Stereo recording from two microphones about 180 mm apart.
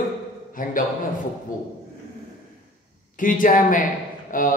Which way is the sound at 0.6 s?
50° left (ahead or behind).